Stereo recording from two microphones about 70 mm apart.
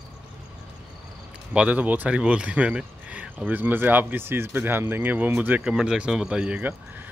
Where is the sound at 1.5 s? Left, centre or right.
Centre.